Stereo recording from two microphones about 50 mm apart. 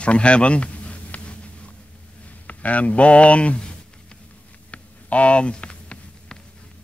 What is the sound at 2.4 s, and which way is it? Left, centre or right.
Speech, left.